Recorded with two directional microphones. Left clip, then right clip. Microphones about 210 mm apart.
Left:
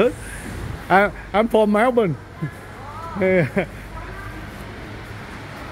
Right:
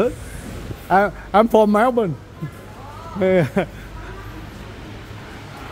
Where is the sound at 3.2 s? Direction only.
15° right (ahead or behind).